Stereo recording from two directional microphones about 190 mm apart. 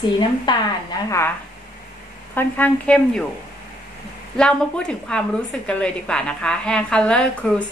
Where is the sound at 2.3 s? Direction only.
10° left (ahead or behind).